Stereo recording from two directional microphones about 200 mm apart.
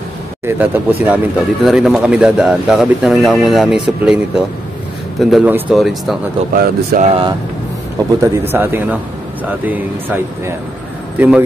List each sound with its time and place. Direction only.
0.5 s speech: 10° right (ahead or behind)
6.5 s speech: 45° right (ahead or behind)
7.1 s speech: 25° right (ahead or behind)
8.2 s speech: 10° right (ahead or behind)